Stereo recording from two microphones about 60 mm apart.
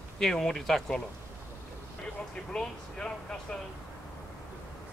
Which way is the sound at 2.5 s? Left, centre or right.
Centre.